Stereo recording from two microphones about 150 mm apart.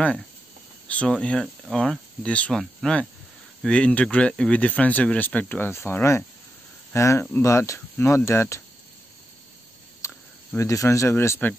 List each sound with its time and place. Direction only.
0.8 s speech: 5° left (ahead or behind)
10.0 s speech: 20° left (ahead or behind)